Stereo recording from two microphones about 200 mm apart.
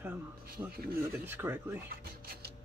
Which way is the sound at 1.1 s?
10° right (ahead or behind).